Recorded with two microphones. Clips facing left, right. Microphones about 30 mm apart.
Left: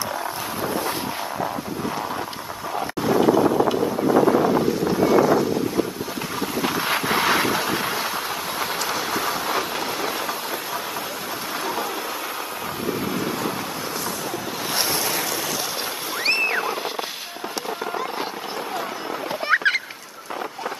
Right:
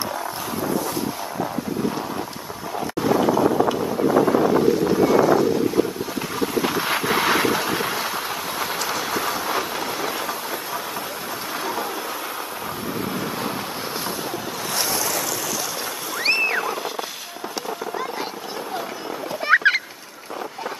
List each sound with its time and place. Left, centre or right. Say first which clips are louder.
3.0 s boat: left 1 dB; centre
6.4 s vehicle: right 2 dB; centre
8.5 s train: even; centre
14.7 s boat: left 1 dB; centre
16.3 s a sound: right 1 dB; centre
19.4 s fowl: right 3 dB; centre